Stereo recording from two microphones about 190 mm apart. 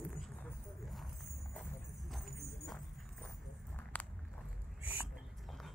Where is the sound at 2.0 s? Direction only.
Centre (ahead or behind).